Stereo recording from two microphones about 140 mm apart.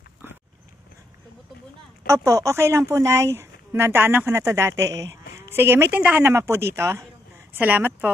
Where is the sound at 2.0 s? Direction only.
20° right (ahead or behind).